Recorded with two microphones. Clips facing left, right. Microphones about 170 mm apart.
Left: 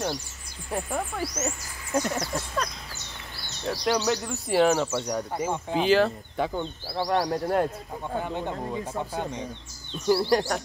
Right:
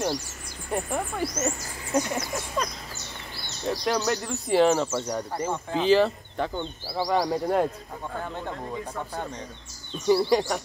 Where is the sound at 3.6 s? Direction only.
Centre (ahead or behind).